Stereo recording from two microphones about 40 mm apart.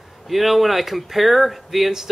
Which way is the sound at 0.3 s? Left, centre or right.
Centre.